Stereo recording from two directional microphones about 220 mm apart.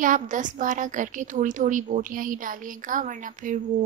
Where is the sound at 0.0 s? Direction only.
35° right (ahead or behind).